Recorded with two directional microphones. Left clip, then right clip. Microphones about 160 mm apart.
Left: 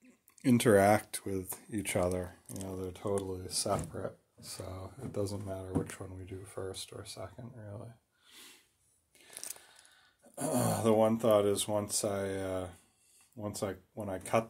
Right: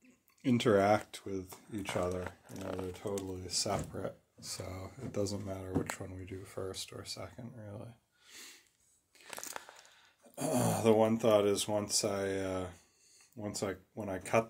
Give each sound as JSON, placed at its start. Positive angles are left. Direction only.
{"t": 0.0, "sound": "speech", "side_deg": 35}
{"t": 2.0, "sound": "speech", "side_deg": 75}
{"t": 2.9, "sound": "speech", "side_deg": 55}
{"t": 3.2, "sound": "speech", "side_deg": 40}
{"t": 3.5, "sound": "speech", "side_deg": 20}
{"t": 3.9, "sound": "speech", "side_deg": 0}
{"t": 9.2, "sound": "a sound", "side_deg": 15}
{"t": 10.3, "sound": "speech", "side_deg": 5}